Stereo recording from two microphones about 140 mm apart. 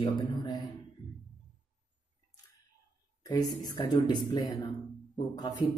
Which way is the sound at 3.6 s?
30° left (ahead or behind).